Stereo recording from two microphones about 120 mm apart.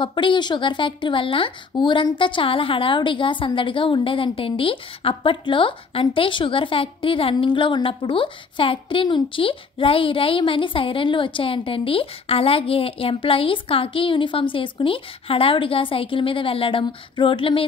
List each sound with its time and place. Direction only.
0.0 s a woman's voice: 40° left (ahead or behind)